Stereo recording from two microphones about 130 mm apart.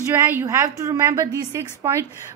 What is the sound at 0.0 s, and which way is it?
A woman's voice, 20° right (ahead or behind).